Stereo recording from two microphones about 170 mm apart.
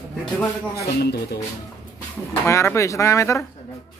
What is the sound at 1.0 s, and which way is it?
Speech, 70° left (ahead or behind).